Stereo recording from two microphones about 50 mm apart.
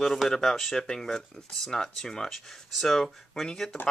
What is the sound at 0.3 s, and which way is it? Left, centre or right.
Speech, centre.